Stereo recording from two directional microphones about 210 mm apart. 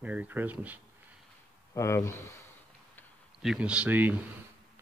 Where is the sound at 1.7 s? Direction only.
15° left (ahead or behind).